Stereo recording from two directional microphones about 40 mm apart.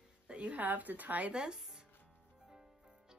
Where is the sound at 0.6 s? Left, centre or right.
Right.